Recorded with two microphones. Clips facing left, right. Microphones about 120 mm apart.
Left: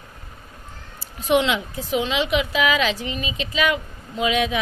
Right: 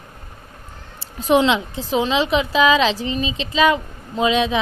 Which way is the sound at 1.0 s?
30° right (ahead or behind).